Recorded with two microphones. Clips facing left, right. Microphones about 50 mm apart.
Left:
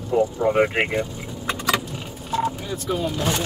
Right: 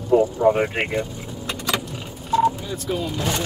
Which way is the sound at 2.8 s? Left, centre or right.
Centre.